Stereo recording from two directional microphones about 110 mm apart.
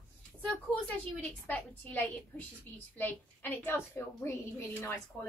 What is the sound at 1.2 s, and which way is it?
A woman's voice, 15° left (ahead or behind).